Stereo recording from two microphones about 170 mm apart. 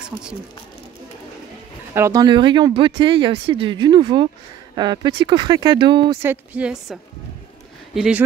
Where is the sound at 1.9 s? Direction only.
20° right (ahead or behind).